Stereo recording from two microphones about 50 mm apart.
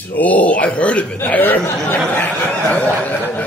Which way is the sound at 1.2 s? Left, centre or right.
Left.